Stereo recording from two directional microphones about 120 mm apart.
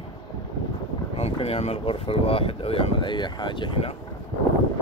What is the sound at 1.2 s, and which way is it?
Speech, 60° left (ahead or behind).